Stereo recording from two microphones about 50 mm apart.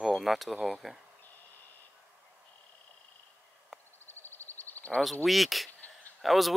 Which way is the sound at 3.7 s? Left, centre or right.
Centre.